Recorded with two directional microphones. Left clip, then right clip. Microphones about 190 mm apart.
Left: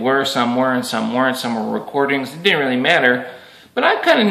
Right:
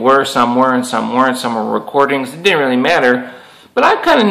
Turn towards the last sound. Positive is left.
turn(degrees=10)  # may be behind; listen again after turning